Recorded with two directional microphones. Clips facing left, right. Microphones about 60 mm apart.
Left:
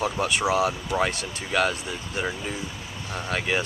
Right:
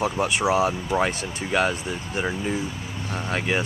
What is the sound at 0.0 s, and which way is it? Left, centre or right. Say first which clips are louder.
Speech: right 2 dB; centre.